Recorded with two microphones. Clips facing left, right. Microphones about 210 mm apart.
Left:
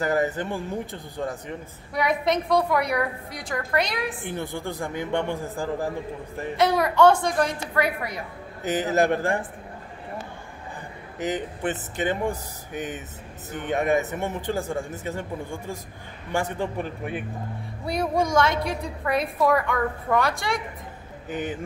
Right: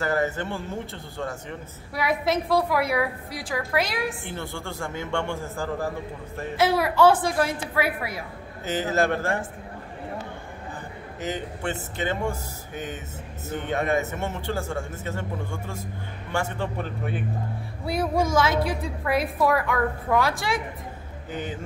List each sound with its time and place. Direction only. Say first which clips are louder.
0.0 s speech: left 1 dB; 15° left (ahead or behind)
2.0 s a woman's voice: left 1 dB; 5° right (ahead or behind)
4.3 s speech: left 3 dB; 15° left (ahead or behind)
6.5 s a woman's voice: left 1 dB; 5° right (ahead or behind)
8.6 s speech: left 2 dB; 15° left (ahead or behind)
11.1 s speech: left 3 dB; 15° left (ahead or behind)
16.3 s a man's voice: left 2 dB; 15° left (ahead or behind)
17.8 s a woman's voice: even; 5° right (ahead or behind)